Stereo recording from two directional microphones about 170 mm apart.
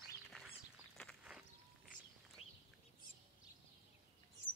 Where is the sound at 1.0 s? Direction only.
5° left (ahead or behind).